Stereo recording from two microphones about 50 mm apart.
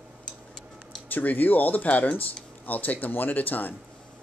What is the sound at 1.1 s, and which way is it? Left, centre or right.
Speech, left.